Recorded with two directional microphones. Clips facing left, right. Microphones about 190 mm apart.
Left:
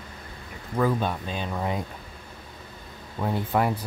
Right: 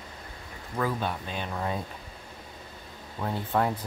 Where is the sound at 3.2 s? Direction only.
10° left (ahead or behind).